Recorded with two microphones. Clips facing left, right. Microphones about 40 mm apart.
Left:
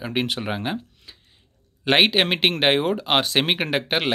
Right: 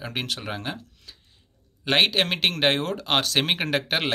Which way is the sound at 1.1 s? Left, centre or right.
Centre.